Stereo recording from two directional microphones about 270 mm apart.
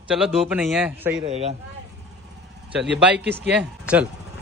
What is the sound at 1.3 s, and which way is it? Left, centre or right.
Speech, right.